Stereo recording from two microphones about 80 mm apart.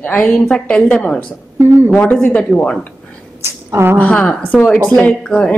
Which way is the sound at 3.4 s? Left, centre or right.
Right.